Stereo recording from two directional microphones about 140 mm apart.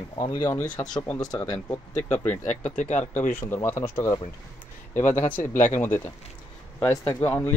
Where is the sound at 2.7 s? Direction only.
60° left (ahead or behind).